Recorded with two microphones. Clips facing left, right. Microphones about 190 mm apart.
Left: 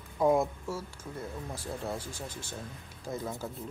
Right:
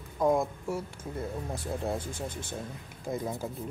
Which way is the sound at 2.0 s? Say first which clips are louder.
Right 4 dB; 55° right (ahead or behind).